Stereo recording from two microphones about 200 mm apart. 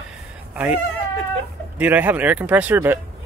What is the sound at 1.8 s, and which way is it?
Speech, 10° right (ahead or behind).